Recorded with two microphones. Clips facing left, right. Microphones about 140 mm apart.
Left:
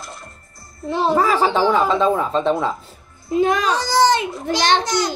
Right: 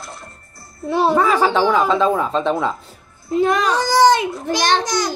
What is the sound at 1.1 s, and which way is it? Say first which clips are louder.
A woman's voice: left 1 dB; 5° left (ahead or behind).